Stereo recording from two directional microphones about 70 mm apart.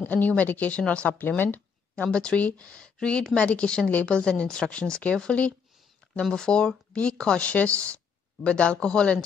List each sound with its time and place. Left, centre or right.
0.0 s speech: left
2.0 s speech: centre